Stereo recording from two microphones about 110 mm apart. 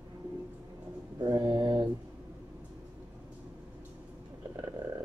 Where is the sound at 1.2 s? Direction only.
40° right (ahead or behind).